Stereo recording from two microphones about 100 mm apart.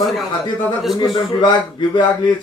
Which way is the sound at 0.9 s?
45° left (ahead or behind).